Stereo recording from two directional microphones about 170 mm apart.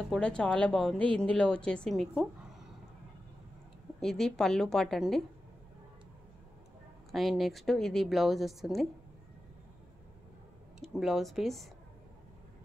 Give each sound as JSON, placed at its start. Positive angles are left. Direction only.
{"t": 0.1, "sound": "a woman's voice", "side_deg": 5}
{"t": 4.0, "sound": "a woman's voice", "side_deg": 5}
{"t": 7.1, "sound": "a woman's voice", "side_deg": 0}
{"t": 10.8, "sound": "a woman's voice", "side_deg": 0}